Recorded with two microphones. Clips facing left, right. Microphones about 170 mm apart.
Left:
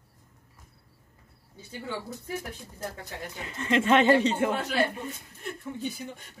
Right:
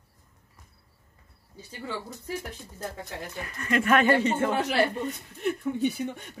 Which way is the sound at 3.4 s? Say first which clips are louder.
Left 1 dB; 20° left (ahead or behind).